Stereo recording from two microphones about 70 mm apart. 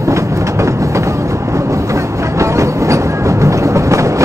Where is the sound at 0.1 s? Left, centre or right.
Right.